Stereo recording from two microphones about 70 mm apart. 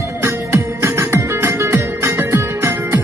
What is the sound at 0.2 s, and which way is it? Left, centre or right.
Music, right.